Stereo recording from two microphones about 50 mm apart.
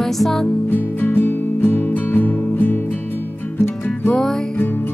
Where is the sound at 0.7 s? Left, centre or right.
Left.